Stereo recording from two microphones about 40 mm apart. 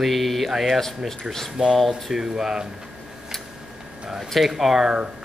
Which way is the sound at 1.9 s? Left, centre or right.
Centre.